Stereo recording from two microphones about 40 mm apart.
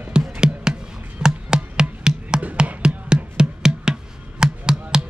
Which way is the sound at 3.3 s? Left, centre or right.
Centre.